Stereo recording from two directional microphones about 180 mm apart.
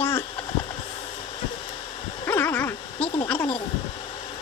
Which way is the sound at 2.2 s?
10° left (ahead or behind).